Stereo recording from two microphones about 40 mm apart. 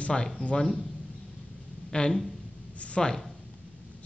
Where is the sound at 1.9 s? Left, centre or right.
Centre.